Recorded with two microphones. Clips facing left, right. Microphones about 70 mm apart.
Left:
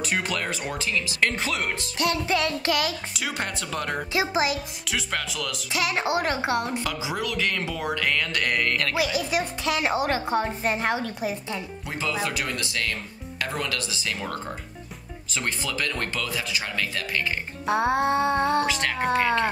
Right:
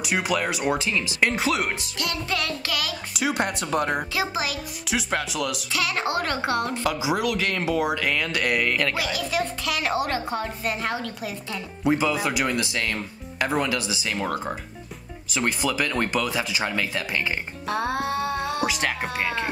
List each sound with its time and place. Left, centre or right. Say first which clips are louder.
0.0 s speech: right 3 dB; centre
0.7 s speech: right 4 dB; right
2.0 s a woman's voice: left 6 dB; left
3.1 s speech: right 5 dB; centre
4.1 s a woman's voice: left 3 dB; left
4.8 s speech: right 4 dB; centre
5.7 s a woman's voice: left 4 dB; left
6.8 s speech: right 5 dB; centre
9.1 s a woman's voice: even; left
11.8 s speech: right 8 dB; right
15.3 s speech: right 5 dB; centre
17.6 s a woman's voice: left 4 dB; left
18.7 s speech: even; centre